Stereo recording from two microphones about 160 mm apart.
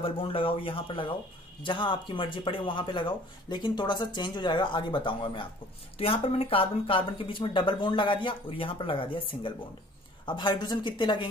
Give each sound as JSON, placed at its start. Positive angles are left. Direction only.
{"t": 0.0, "sound": "speech", "side_deg": 35}